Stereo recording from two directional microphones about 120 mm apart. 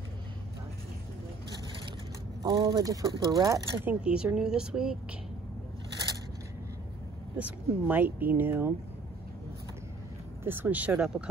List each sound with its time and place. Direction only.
2.4 s speech: 35° right (ahead or behind)
3.8 s speech: 10° right (ahead or behind)
7.3 s speech: 15° right (ahead or behind)
10.4 s speech: 20° right (ahead or behind)